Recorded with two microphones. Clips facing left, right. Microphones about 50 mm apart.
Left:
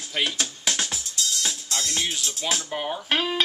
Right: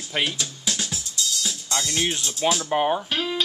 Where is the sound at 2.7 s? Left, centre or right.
Right.